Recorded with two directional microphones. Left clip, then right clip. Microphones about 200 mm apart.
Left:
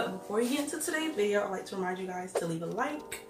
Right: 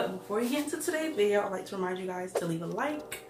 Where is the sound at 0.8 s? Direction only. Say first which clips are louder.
Right 3 dB; 5° right (ahead or behind).